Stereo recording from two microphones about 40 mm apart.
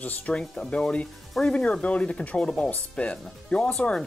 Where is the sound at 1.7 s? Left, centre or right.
Left.